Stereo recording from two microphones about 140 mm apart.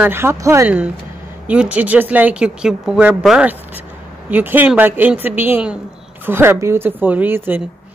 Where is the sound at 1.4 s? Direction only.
10° right (ahead or behind).